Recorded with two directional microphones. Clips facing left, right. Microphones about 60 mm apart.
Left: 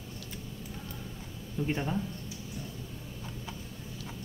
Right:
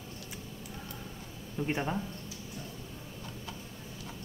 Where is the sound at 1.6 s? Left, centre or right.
Right.